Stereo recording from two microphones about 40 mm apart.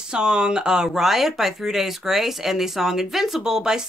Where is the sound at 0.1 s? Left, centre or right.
Right.